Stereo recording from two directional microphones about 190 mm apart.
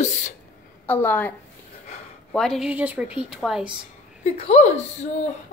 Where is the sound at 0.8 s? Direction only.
10° left (ahead or behind).